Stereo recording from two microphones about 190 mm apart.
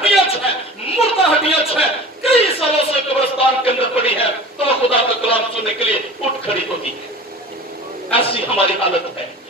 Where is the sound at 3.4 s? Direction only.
30° left (ahead or behind).